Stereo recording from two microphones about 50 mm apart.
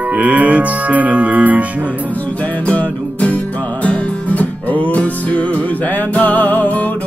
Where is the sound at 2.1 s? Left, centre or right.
Left.